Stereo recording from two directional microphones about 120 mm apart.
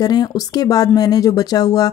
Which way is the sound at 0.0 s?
35° left (ahead or behind).